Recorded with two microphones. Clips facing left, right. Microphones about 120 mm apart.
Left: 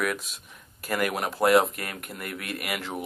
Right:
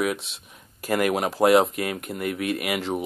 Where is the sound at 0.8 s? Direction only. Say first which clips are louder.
Right 5 dB; 35° right (ahead or behind).